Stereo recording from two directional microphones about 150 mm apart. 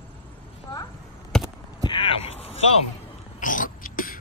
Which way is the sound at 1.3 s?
5° left (ahead or behind).